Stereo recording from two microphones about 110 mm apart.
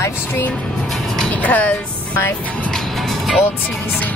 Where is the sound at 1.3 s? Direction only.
15° left (ahead or behind).